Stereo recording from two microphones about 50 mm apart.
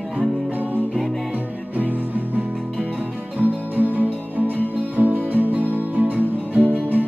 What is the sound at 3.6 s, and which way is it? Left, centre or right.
Music, right.